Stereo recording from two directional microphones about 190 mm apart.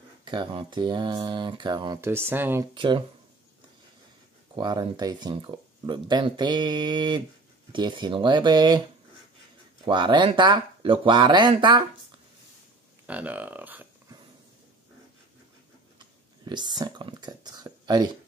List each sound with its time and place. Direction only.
0.2 s speech: 25° right (ahead or behind)
2.7 s speech: 25° right (ahead or behind)
4.6 s speech: 20° right (ahead or behind)
9.8 s speech: 25° right (ahead or behind)
13.0 s speech: 10° right (ahead or behind)
16.0 s speech: 25° right (ahead or behind)